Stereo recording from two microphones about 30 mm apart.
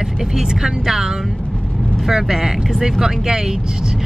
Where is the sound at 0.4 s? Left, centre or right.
Centre.